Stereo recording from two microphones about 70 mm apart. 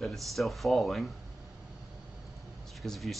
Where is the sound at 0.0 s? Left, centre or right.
Centre.